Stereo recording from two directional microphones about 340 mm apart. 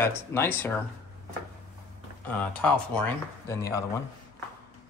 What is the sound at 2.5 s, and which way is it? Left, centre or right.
Speech, centre.